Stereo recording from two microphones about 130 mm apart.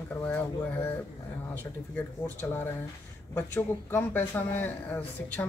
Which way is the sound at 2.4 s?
15° left (ahead or behind).